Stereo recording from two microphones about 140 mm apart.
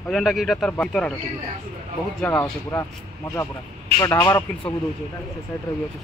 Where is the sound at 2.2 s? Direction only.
15° left (ahead or behind).